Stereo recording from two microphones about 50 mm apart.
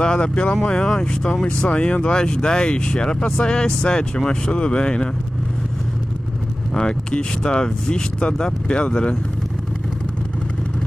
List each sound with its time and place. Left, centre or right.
0.0 s speech: centre
6.7 s speech: centre